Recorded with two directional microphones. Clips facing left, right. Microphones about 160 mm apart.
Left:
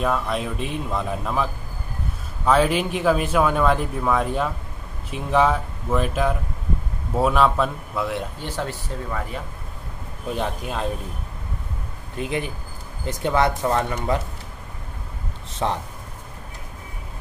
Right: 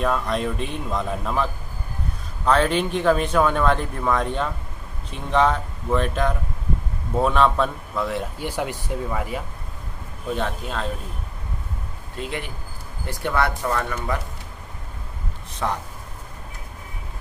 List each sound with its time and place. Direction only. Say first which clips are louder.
0.0 s speech: right 1 dB; centre (ahead or behind)
8.4 s speech: right 2 dB; 10° right (ahead or behind)
10.3 s speech: even; 15° left (ahead or behind)
12.2 s speech: left 4 dB; 15° left (ahead or behind)
15.6 s speech: left 2 dB; 25° left (ahead or behind)